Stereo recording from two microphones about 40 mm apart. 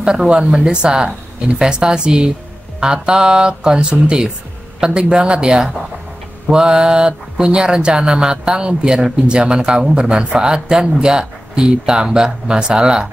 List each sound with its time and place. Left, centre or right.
0.0 s speech: right